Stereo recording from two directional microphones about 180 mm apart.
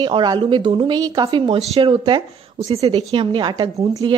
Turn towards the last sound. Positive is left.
turn(degrees=-25)  # may be behind; listen again after turning